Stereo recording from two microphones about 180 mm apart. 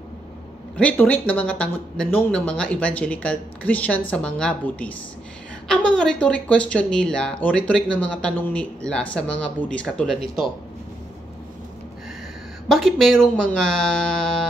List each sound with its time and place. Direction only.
0.7 s speech: 10° left (ahead or behind)
12.6 s speech: centre (ahead or behind)